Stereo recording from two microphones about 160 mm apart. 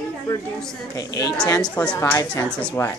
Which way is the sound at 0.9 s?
20° left (ahead or behind).